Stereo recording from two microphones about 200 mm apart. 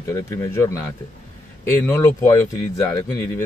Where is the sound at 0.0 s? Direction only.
15° left (ahead or behind).